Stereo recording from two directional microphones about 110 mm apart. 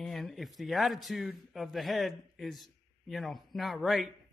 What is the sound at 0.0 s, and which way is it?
A man's voice, centre (ahead or behind).